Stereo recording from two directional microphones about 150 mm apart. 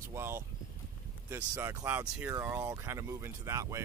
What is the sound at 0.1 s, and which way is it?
Speech, 15° right (ahead or behind).